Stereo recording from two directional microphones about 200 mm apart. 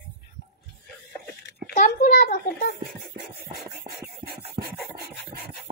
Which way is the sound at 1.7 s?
40° left (ahead or behind).